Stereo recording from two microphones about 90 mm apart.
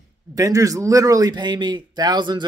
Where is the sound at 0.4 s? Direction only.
40° right (ahead or behind).